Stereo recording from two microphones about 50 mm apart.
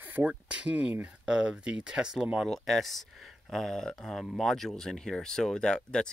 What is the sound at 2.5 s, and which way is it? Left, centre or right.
Speech, centre.